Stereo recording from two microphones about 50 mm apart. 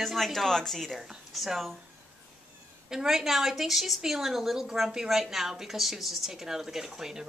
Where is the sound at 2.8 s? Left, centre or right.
Centre.